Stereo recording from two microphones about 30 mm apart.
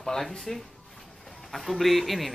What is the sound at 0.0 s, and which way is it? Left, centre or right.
Speech, centre.